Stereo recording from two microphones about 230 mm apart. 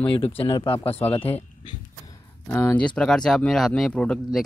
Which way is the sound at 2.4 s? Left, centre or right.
Centre.